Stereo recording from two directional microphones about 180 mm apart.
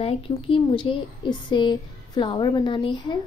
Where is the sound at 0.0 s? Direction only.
30° left (ahead or behind).